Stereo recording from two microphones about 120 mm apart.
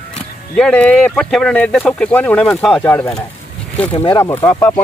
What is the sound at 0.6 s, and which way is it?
Speech, 10° left (ahead or behind).